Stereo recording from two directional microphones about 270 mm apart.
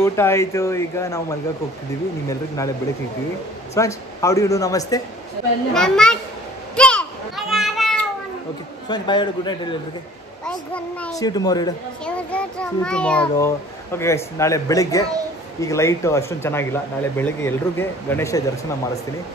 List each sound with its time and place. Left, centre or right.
0.0 s a child's voice: centre
2.2 s a child's voice: centre
3.7 s a child's voice: centre
6.7 s children playing: centre
8.8 s a child's voice: centre
10.4 s a child's voice: centre